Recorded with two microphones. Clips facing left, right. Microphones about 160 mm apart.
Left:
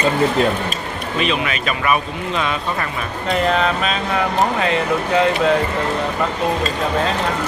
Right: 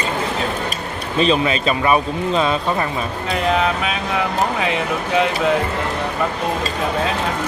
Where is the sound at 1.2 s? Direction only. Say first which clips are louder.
Right 5 dB; 30° right (ahead or behind).